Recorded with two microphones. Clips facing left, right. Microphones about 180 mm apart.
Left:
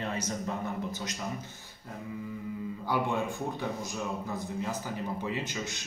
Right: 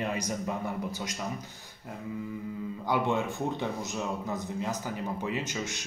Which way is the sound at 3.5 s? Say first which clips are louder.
Right 2 dB; 20° right (ahead or behind).